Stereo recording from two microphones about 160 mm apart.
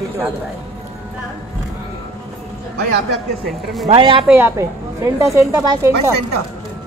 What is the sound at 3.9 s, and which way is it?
Speech, 35° right (ahead or behind).